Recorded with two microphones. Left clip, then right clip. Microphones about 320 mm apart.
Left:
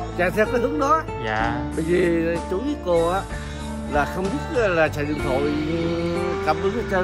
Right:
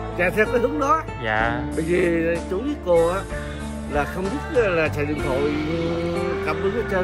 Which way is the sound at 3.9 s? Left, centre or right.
Centre.